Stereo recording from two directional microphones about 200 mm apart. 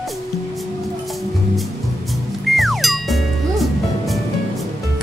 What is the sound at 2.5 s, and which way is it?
Music, centre (ahead or behind).